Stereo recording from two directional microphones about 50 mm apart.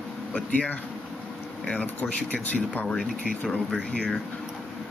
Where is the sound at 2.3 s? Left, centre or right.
Left.